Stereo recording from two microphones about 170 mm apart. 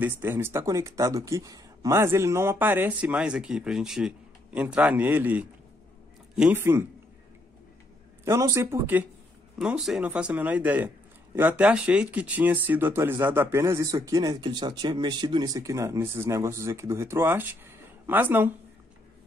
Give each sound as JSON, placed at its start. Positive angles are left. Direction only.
{"t": 0.2, "sound": "speech", "side_deg": -15}
{"t": 8.3, "sound": "speech", "side_deg": -15}